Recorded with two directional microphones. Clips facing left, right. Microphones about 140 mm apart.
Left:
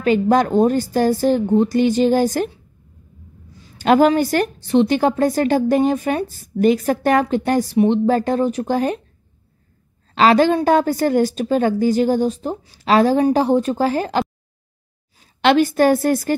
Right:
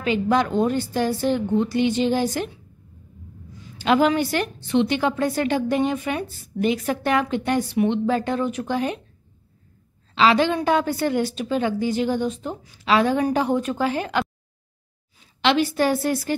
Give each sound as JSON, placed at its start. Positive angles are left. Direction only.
{"t": 0.0, "sound": "a woman's voice", "side_deg": 45}
{"t": 3.6, "sound": "a woman's voice", "side_deg": 45}
{"t": 10.1, "sound": "a woman's voice", "side_deg": 45}
{"t": 15.1, "sound": "a woman's voice", "side_deg": 45}